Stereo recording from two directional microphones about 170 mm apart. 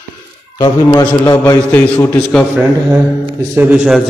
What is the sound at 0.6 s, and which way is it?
A man's voice, 20° left (ahead or behind).